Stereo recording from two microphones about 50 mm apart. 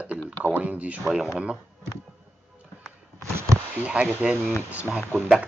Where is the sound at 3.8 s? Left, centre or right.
Right.